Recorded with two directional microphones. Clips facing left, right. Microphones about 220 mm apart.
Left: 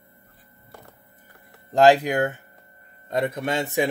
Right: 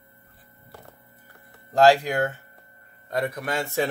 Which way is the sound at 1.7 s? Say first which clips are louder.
Left 1 dB; 20° left (ahead or behind).